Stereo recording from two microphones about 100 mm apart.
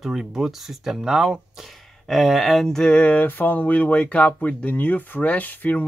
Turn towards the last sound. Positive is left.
turn(degrees=15)  # may be behind; listen again after turning